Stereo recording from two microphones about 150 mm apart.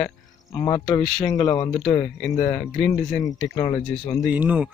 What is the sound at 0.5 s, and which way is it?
Speech, 30° left (ahead or behind).